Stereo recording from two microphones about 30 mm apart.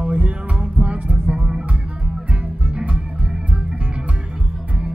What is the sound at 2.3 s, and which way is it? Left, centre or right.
Music, right.